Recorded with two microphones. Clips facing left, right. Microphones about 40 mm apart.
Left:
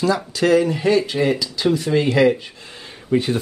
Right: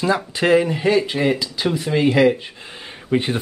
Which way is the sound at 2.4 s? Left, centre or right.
Right.